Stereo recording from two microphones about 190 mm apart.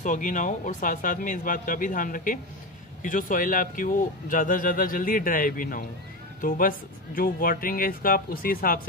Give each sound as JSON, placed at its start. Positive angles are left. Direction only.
{"t": 0.0, "sound": "speech", "side_deg": 40}